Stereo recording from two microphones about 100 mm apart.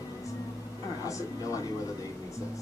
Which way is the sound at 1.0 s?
35° left (ahead or behind).